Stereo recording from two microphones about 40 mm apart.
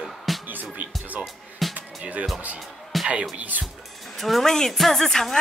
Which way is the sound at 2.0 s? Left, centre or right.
Right.